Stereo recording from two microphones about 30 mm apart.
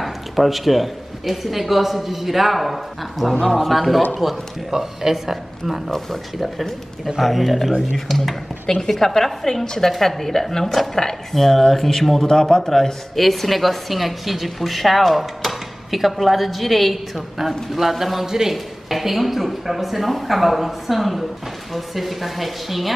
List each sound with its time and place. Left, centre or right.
0.0 s a woman's voice: centre
5.9 s a woman's voice: centre
7.2 s a woman's voice: centre
13.2 s a woman's voice: centre